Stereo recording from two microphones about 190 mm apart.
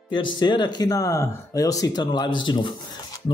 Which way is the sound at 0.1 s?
25° left (ahead or behind).